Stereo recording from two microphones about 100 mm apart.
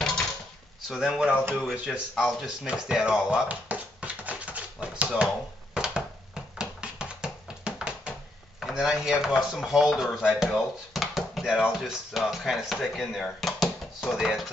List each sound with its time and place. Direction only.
0.8 s speech: 5° right (ahead or behind)
6.6 s a sound: 10° right (ahead or behind)
8.5 s speech: 5° right (ahead or behind)